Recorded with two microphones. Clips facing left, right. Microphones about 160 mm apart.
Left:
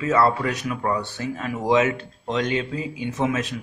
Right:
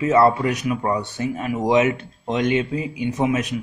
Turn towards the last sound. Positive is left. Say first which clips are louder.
# right 3 dB
turn(degrees=-15)  # may be behind; listen again after turning